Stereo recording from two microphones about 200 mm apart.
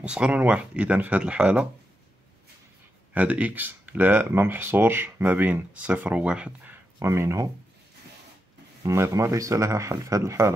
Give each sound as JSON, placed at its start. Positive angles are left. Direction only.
{"t": 0.0, "sound": "speech", "side_deg": -5}
{"t": 3.2, "sound": "speech", "side_deg": -5}
{"t": 8.8, "sound": "speech", "side_deg": -15}